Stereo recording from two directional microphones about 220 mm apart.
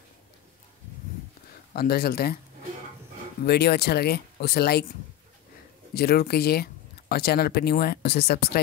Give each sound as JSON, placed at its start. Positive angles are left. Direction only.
{"t": 1.7, "sound": "speech", "side_deg": 45}
{"t": 3.4, "sound": "speech", "side_deg": 45}
{"t": 5.9, "sound": "speech", "side_deg": 45}